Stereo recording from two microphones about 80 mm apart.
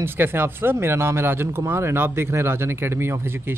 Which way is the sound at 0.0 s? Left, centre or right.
Right.